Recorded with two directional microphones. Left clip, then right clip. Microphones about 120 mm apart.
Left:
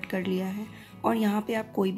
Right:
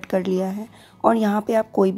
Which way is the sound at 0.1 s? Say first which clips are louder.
Right 11 dB; 40° right (ahead or behind).